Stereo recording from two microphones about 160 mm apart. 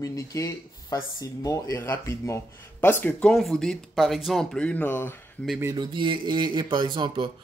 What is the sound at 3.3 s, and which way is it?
Speech, centre (ahead or behind).